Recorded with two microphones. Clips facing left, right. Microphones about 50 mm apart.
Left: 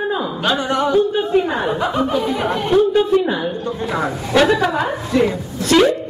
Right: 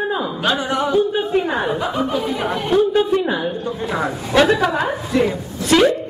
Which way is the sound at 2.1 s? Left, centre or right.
Centre.